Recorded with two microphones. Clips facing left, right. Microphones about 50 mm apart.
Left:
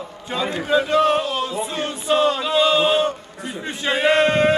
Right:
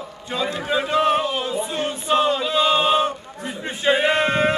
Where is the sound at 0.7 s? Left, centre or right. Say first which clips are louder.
Left 2 dB; centre.